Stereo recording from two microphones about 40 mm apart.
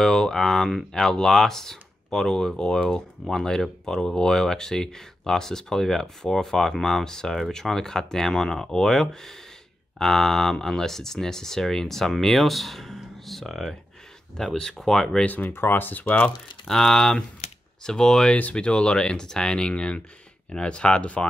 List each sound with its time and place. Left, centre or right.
0.0 s speech: centre
15.2 s speech: left
16.6 s speech: centre
18.3 s speech: left